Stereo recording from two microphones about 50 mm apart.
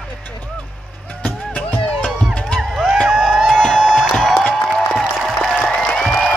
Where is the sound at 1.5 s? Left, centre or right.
Left.